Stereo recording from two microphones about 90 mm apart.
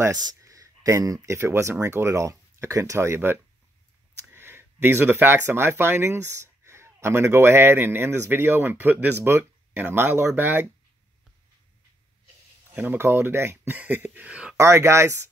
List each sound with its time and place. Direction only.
0.0 s speech: 45° right (ahead or behind); by 10.7 s 20° right (ahead or behind)
12.7 s speech: 25° right (ahead or behind)
14.6 s speech: 30° right (ahead or behind)